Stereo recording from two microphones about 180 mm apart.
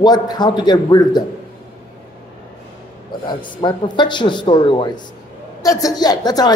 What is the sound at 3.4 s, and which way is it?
A man's voice, 25° left (ahead or behind).